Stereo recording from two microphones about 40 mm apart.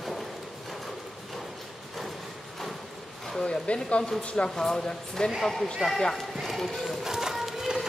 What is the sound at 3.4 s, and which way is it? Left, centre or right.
Speech, left.